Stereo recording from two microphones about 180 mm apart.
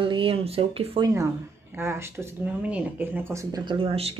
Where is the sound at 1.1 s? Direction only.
15° right (ahead or behind).